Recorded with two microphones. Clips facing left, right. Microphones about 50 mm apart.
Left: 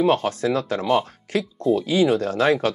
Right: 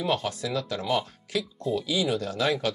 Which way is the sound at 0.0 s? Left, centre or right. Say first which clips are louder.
Left 8 dB; left.